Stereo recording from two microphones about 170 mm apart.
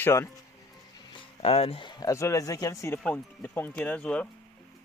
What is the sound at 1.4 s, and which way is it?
Speech, 35° left (ahead or behind).